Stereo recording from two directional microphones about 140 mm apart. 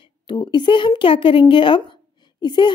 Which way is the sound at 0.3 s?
35° left (ahead or behind).